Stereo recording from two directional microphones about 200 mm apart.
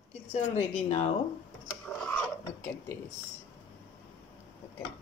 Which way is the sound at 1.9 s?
5° left (ahead or behind).